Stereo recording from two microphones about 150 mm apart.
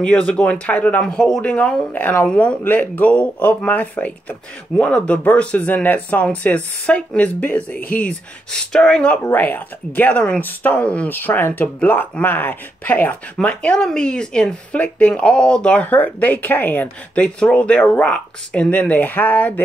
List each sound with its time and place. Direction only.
0.0 s speech: 5° left (ahead or behind)
7.7 s speech: 65° left (ahead or behind)
8.0 s speech: 5° left (ahead or behind)